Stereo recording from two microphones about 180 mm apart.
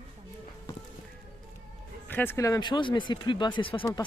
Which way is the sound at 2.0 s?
10° left (ahead or behind).